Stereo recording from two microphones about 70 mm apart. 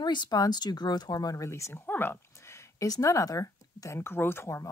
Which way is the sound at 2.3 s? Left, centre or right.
Left.